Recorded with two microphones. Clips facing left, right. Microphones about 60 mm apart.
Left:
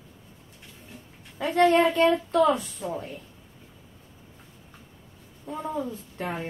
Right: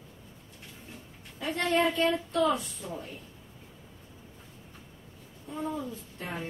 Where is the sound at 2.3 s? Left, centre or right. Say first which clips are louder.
Left 5 dB; left.